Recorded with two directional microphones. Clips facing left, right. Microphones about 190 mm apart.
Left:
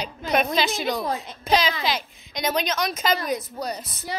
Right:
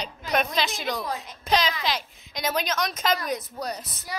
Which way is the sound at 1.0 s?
25° left (ahead or behind).